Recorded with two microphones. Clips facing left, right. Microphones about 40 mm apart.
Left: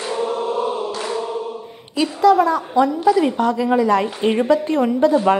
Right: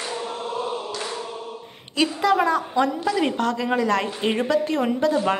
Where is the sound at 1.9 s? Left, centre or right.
Centre.